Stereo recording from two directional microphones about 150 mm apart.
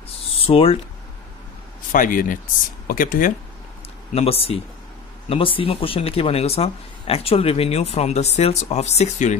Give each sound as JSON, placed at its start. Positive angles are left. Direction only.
{"t": 0.4, "sound": "speech", "side_deg": 40}
{"t": 1.9, "sound": "speech", "side_deg": 65}
{"t": 4.1, "sound": "speech", "side_deg": 40}